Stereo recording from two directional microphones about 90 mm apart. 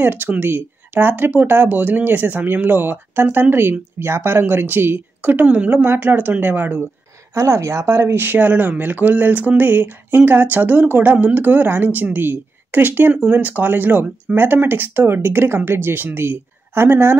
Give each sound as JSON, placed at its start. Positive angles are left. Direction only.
{"t": 0.0, "sound": "speech", "side_deg": -20}
{"t": 7.3, "sound": "speech", "side_deg": -35}